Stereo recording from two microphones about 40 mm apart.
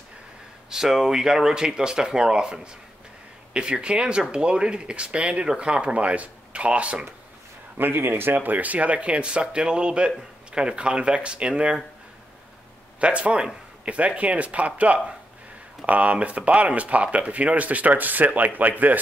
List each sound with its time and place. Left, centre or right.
0.7 s speech: centre; by 7.1 s right
7.7 s speech: right
13.0 s speech: right